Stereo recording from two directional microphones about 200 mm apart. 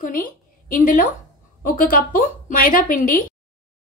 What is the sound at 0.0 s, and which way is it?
A woman's voice, 45° left (ahead or behind).